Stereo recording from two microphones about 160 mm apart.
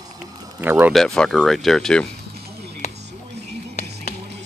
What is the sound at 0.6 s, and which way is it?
Speech, 10° right (ahead or behind).